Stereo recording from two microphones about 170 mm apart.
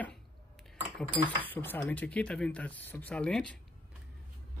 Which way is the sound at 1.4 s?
10° left (ahead or behind).